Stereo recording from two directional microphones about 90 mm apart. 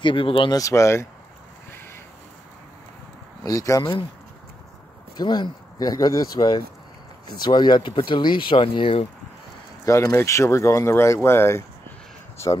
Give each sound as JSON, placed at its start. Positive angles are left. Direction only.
{"t": 0.0, "sound": "speech", "side_deg": 70}
{"t": 0.5, "sound": "speech", "side_deg": 40}
{"t": 3.4, "sound": "speech", "side_deg": 40}
{"t": 5.1, "sound": "speech", "side_deg": 55}
{"t": 9.8, "sound": "speech", "side_deg": 35}